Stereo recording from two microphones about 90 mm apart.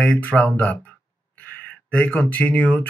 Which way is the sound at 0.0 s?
20° left (ahead or behind).